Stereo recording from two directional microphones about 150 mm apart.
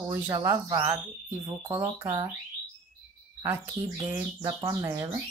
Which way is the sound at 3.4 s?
15° right (ahead or behind).